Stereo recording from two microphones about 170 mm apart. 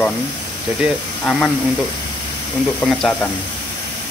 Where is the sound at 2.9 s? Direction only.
Centre (ahead or behind).